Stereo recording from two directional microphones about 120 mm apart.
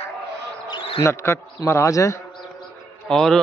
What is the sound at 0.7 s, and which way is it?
Basketball bounce, 45° left (ahead or behind).